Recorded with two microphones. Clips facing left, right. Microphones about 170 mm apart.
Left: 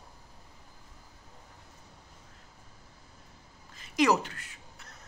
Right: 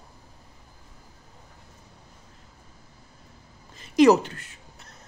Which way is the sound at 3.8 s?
25° right (ahead or behind).